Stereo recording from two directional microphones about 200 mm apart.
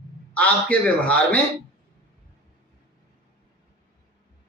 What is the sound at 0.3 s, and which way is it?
A man's voice, 5° left (ahead or behind).